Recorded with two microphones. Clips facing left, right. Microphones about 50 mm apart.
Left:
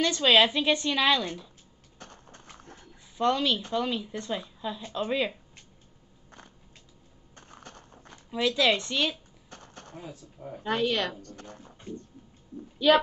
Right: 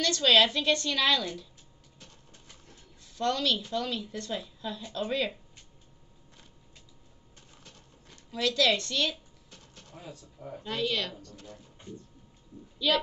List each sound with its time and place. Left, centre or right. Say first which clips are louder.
0.0 s a woman's voice: left 2 dB; centre
2.0 s horse: left 7 dB; left
3.2 s a woman's voice: left 3 dB; centre
7.3 s a sound: left 8 dB; left
8.3 s a woman's voice: left 2 dB; centre
9.5 s a sound: left 6 dB; left
10.6 s a woman's voice: left 4 dB; left